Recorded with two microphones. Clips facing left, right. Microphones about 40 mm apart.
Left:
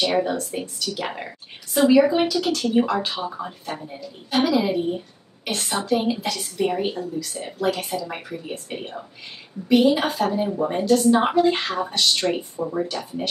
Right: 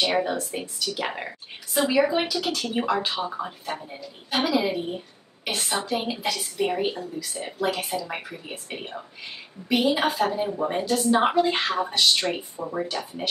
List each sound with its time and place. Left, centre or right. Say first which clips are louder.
0.0 s a woman's voice: left 2 dB; centre